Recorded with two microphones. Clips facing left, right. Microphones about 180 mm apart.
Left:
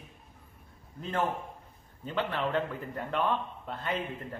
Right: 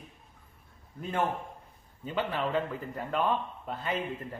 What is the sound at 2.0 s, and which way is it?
A man's voice, 10° right (ahead or behind).